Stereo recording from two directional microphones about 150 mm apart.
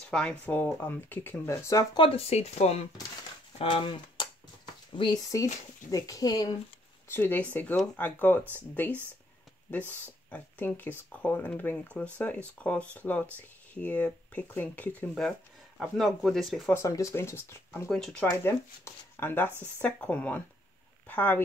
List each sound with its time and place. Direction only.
0.1 s speech: 10° left (ahead or behind)
2.0 s speech: 40° left (ahead or behind)
3.5 s speech: 35° left (ahead or behind)
7.1 s speech: 15° left (ahead or behind)
10.3 s speech: 10° left (ahead or behind)
16.7 s speech: 20° left (ahead or behind)
17.9 s speech: 5° left (ahead or behind)
18.3 s speech: 15° left (ahead or behind)